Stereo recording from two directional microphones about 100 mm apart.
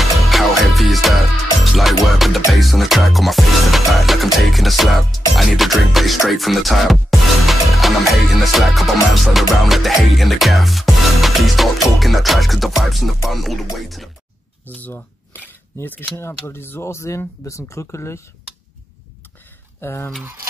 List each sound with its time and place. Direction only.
0.0 s music: centre (ahead or behind)
14.7 s a sound: 15° left (ahead or behind)
16.2 s speech: 25° left (ahead or behind)
19.8 s speech: 25° left (ahead or behind)